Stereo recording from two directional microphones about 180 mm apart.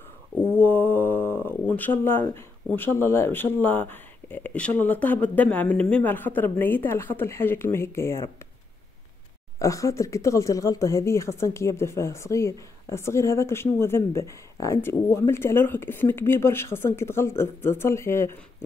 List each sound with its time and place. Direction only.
0.5 s speech: 10° left (ahead or behind)
9.6 s speech: 15° left (ahead or behind)